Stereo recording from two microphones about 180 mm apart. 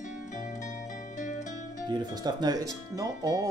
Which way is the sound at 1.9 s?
25° right (ahead or behind).